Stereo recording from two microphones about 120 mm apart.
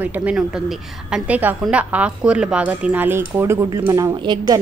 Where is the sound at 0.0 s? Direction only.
15° right (ahead or behind).